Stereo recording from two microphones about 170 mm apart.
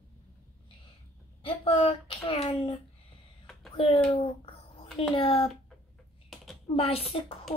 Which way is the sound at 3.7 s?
35° left (ahead or behind).